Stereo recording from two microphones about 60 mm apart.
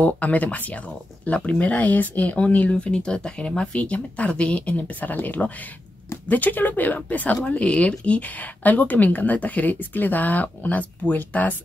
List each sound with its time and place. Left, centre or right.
0.0 s speech: left